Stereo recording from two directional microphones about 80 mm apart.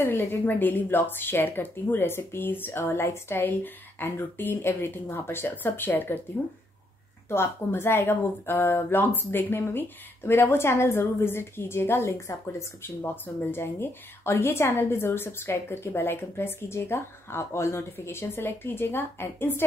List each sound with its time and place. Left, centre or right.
0.0 s speech: left
7.2 s speech: left